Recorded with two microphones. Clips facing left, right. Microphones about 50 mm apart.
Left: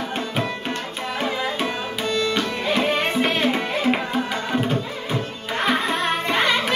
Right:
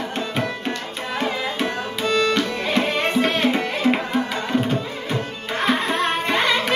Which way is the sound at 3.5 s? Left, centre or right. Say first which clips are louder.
Right 1 dB; centre.